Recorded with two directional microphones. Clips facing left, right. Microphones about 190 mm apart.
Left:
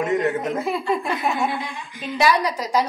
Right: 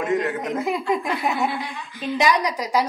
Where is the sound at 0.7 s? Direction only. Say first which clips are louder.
Even; 15° right (ahead or behind).